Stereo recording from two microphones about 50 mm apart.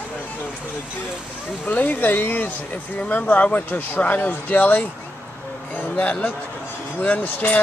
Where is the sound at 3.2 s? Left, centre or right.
Left.